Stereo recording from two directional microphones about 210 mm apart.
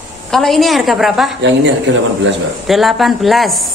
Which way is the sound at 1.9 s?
60° right (ahead or behind).